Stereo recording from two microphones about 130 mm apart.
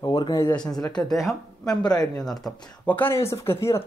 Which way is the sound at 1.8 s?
30° left (ahead or behind).